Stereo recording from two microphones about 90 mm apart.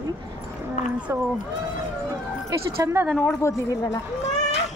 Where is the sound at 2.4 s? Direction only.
30° right (ahead or behind).